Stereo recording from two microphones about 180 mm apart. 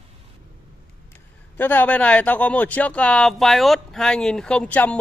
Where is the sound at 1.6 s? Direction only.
10° left (ahead or behind).